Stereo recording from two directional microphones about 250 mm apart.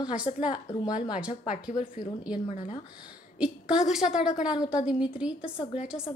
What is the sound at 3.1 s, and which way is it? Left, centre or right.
A woman's voice, centre.